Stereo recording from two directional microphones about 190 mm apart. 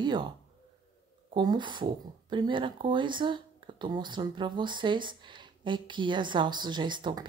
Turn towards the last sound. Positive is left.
turn(degrees=-25)  # may be behind; listen again after turning